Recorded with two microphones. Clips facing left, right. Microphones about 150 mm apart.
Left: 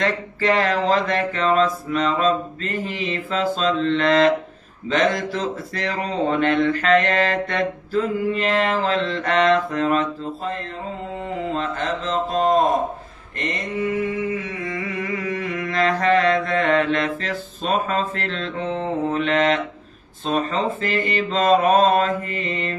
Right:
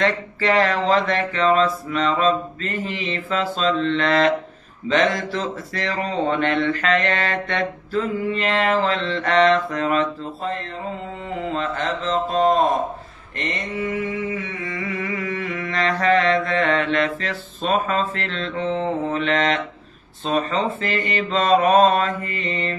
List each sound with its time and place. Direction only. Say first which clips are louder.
0.0 s mantra: right 1 dB; 40° left (ahead or behind)
11.5 s mantra: right 2 dB; 40° left (ahead or behind)
12.0 s mantra: right 1 dB; 40° right (ahead or behind)
12.4 s mantra: even; 40° left (ahead or behind)
13.6 s a sound: left 3 dB; 40° left (ahead or behind)
18.6 s mantra: right 1 dB; 40° left (ahead or behind)